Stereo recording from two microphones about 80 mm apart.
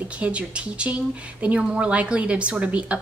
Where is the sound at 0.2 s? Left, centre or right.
Centre.